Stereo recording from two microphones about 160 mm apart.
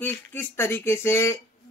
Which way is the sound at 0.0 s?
10° left (ahead or behind).